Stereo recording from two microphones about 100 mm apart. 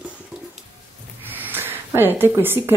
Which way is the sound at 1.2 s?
20° right (ahead or behind).